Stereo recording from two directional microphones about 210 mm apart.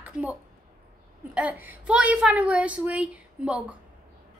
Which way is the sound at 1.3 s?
5° right (ahead or behind).